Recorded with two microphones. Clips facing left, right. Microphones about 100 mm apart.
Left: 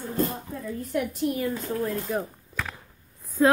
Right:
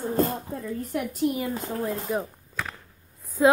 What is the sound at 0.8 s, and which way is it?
Speech, centre (ahead or behind).